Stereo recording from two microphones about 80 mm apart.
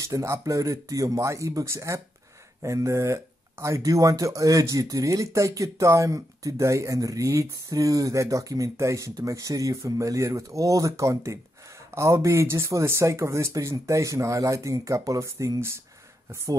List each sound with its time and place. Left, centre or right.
0.0 s speech: right